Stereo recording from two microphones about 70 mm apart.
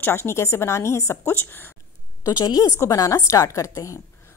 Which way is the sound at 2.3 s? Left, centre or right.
Left.